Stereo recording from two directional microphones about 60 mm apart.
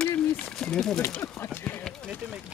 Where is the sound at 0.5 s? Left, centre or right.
Centre.